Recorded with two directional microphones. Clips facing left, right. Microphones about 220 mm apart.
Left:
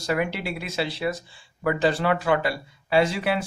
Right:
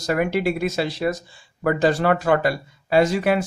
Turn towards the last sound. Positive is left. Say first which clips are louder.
# right 4 dB
turn(degrees=-45)  # may be behind; listen again after turning